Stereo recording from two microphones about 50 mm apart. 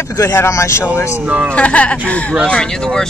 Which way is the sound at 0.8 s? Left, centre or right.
Left.